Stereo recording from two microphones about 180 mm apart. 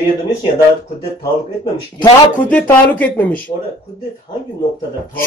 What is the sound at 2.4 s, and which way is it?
Speech, 10° left (ahead or behind).